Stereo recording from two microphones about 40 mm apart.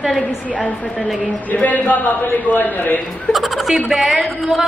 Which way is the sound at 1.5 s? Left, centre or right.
Left.